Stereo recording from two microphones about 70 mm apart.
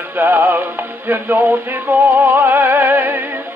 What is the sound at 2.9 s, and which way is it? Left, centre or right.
Music, right.